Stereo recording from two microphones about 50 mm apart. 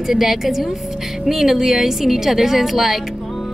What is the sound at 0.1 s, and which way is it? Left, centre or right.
A woman's voice, centre.